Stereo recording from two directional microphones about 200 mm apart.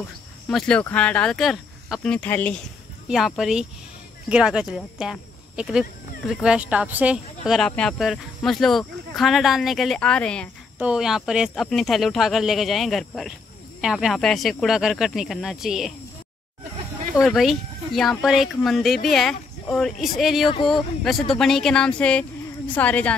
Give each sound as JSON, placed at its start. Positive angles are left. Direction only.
{"t": 0.5, "sound": "speech", "side_deg": 5}
{"t": 17.2, "sound": "a woman's voice", "side_deg": 0}